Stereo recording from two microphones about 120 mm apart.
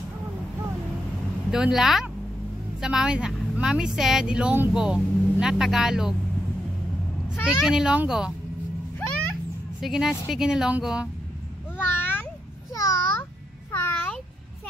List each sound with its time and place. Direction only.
1.5 s a woman's voice: 5° right (ahead or behind)
7.4 s a woman's voice: 5° right (ahead or behind)
9.8 s a woman's voice: 5° right (ahead or behind)
12.0 s a sound: 15° left (ahead or behind)
12.7 s babbling: 25° left (ahead or behind)
13.7 s a sound: 15° left (ahead or behind)